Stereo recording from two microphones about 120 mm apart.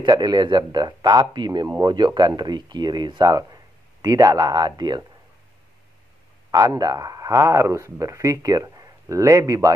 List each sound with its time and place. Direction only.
0.0 s speech: 35° right (ahead or behind)
6.5 s speech: 30° right (ahead or behind)